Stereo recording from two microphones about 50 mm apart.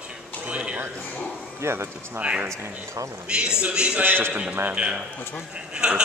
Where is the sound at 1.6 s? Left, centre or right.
Right.